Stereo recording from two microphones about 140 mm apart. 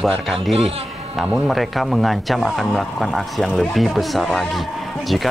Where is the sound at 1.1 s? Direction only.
Centre (ahead or behind).